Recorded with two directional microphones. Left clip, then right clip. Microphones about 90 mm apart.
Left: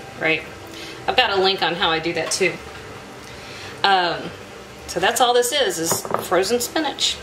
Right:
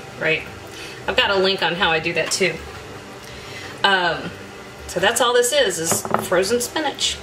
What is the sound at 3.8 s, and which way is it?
A woman's voice, 15° left (ahead or behind).